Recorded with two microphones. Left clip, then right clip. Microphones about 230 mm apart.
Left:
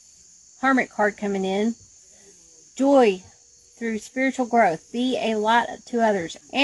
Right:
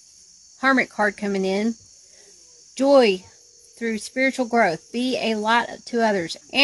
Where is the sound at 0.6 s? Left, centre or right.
Right.